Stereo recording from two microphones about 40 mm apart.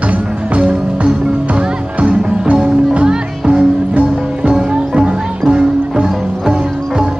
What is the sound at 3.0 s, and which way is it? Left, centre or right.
Music, centre.